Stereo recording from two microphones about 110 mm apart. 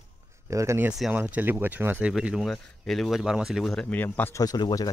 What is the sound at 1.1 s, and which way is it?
Speech, 15° right (ahead or behind).